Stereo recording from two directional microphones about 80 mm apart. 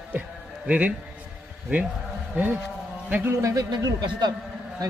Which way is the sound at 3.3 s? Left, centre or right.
Right.